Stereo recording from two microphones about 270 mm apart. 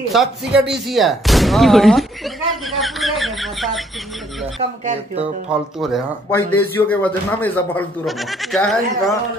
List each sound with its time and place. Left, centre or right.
0.1 s speech: centre
4.6 s speech: right
5.5 s speech: centre
6.3 s speech: centre